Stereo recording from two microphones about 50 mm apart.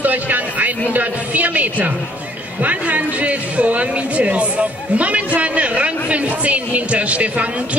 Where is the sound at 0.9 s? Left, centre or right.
Right.